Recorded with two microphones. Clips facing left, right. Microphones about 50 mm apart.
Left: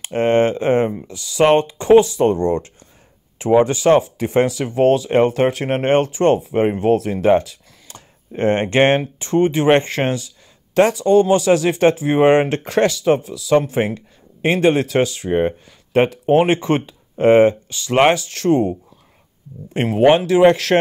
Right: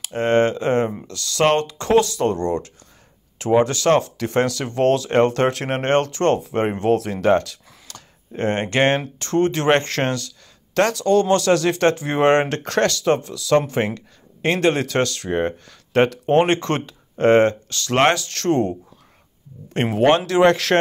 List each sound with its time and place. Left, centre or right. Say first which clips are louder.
0.0 s speech: left 2 dB; left; by 20.8 s centre